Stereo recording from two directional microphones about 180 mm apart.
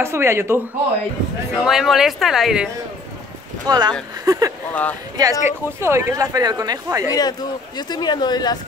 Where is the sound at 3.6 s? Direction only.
20° right (ahead or behind).